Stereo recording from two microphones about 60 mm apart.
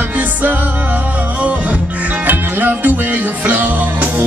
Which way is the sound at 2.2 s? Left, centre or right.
Right.